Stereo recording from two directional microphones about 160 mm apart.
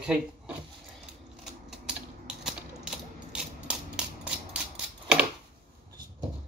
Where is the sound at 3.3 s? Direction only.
5° right (ahead or behind).